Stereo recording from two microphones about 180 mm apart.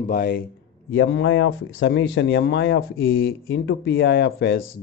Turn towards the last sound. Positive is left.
turn(degrees=60)  # may be behind; listen again after turning